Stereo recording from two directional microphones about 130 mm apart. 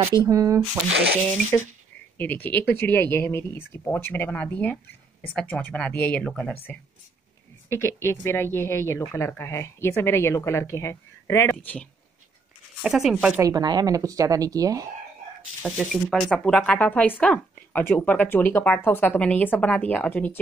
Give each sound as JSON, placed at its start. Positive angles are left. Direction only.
{"t": 0.2, "sound": "speech", "side_deg": -25}
{"t": 2.1, "sound": "speech", "side_deg": 15}
{"t": 11.5, "sound": "speech", "side_deg": 10}
{"t": 12.8, "sound": "speech", "side_deg": -5}
{"t": 13.4, "sound": "speech", "side_deg": -30}
{"t": 15.9, "sound": "speech", "side_deg": 0}